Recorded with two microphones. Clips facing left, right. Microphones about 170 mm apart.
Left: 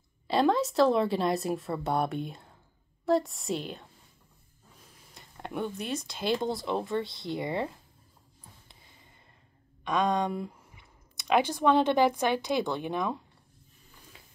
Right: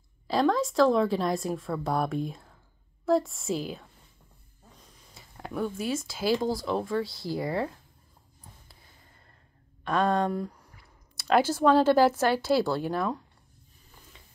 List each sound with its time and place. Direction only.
0.3 s speech: centre (ahead or behind)
5.1 s speech: centre (ahead or behind)
9.8 s speech: 15° left (ahead or behind); by 12.3 s 5° right (ahead or behind)
12.4 s a woman's voice: 15° left (ahead or behind)
12.8 s speech: centre (ahead or behind)